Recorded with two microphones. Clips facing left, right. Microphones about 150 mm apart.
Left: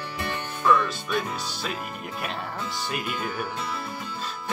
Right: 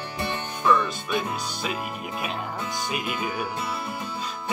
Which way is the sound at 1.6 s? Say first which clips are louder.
Right 2 dB; 5° right (ahead or behind).